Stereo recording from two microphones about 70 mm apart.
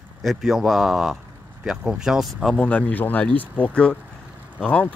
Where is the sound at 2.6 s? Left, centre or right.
Centre.